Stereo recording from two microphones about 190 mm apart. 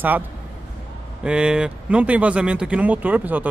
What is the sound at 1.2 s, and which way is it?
Speech, 5° right (ahead or behind).